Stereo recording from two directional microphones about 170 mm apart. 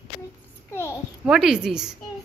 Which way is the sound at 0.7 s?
15° left (ahead or behind).